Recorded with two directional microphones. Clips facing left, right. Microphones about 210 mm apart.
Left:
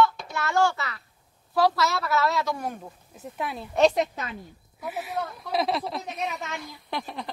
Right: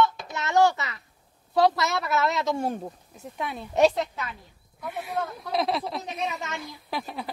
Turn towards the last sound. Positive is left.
turn(degrees=-5)  # may be behind; listen again after turning